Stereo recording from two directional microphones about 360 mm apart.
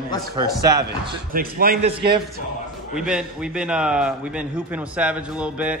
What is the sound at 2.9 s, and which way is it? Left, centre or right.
A man's voice, centre.